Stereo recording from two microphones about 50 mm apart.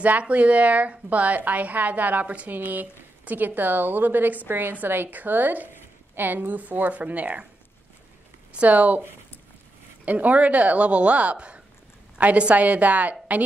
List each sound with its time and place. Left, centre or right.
0.0 s a woman's voice: right
8.5 s a woman's voice: right
10.0 s speech: right